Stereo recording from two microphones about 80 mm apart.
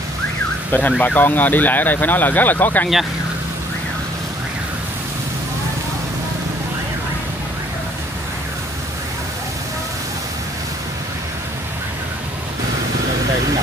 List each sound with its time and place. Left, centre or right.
0.7 s car alarm: centre
1.0 s speech: left